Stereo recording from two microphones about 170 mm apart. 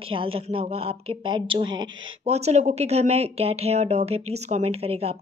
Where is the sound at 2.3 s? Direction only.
40° right (ahead or behind).